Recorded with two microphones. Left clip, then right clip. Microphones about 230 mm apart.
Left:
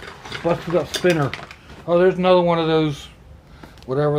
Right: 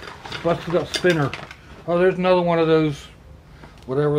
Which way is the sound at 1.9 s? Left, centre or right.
Centre.